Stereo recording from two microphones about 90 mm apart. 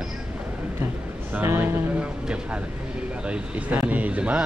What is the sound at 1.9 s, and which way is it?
Speech, 10° right (ahead or behind).